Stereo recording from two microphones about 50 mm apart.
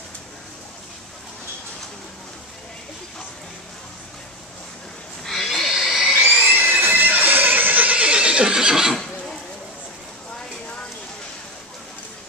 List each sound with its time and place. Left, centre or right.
5.2 s pig: centre
5.5 s a sound: centre
6.5 s neigh: right; by 8.9 s centre